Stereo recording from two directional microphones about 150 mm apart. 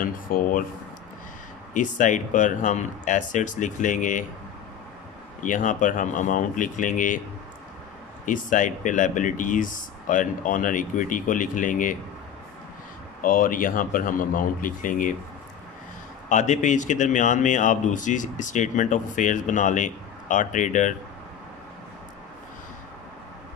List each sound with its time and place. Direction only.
0.0 s speech: 65° left (ahead or behind)
1.7 s speech: 55° left (ahead or behind)
5.4 s speech: 60° left (ahead or behind)
8.3 s speech: 60° left (ahead or behind)
13.2 s speech: 70° left (ahead or behind)
16.3 s speech: 55° left (ahead or behind)